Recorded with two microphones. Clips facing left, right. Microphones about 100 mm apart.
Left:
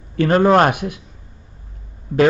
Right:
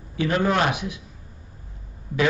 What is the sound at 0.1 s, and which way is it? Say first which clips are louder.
Speech: left 8 dB; 50° left (ahead or behind).